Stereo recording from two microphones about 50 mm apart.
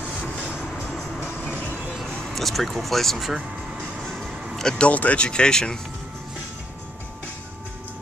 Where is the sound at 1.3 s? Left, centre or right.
Left.